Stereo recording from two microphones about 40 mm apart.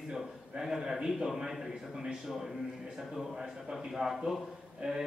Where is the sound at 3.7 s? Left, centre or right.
Centre.